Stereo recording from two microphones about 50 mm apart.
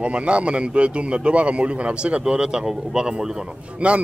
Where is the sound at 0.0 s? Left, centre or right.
Right.